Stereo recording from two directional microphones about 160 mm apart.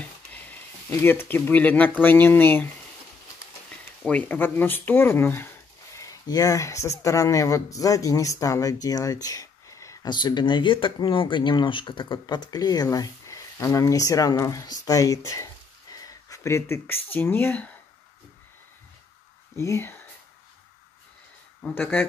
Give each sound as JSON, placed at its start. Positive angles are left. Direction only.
{"t": 0.0, "sound": "speech", "side_deg": 10}
{"t": 4.0, "sound": "speech", "side_deg": 10}
{"t": 19.5, "sound": "speech", "side_deg": 15}
{"t": 21.5, "sound": "speech", "side_deg": 10}